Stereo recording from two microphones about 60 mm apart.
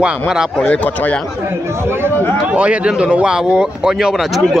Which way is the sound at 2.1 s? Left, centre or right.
Left.